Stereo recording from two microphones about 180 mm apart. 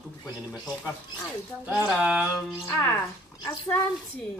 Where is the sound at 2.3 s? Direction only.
15° left (ahead or behind).